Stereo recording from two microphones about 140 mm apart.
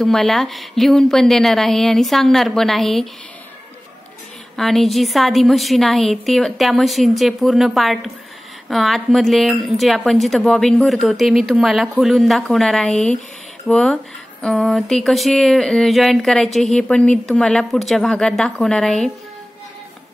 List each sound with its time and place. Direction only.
0.0 s speech: centre (ahead or behind)
4.6 s speech: centre (ahead or behind)